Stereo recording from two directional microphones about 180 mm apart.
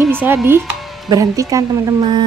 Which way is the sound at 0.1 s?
10° right (ahead or behind).